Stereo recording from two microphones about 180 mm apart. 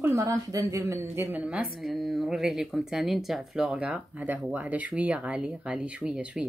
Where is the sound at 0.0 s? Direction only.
20° right (ahead or behind).